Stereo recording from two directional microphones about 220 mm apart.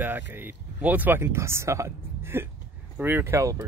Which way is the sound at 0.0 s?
10° right (ahead or behind).